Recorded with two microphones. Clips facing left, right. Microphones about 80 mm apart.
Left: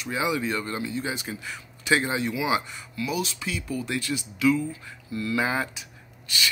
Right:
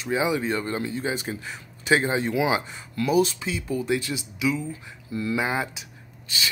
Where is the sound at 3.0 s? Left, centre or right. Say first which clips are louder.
Right 8 dB; right.